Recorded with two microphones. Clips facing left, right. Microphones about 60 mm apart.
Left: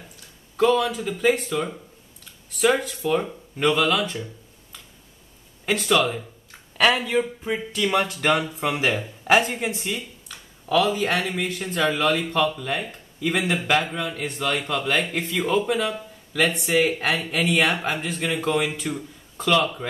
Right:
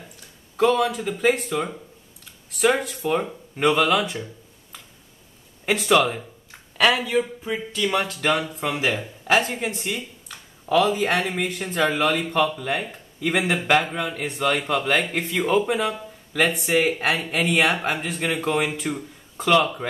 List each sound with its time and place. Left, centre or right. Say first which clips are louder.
0.6 s speech: even; centre
5.7 s speech: right 2 dB; centre
6.8 s speech: even; centre
10.3 s a sound: right 1 dB; centre
11.3 s speech: right 1 dB; centre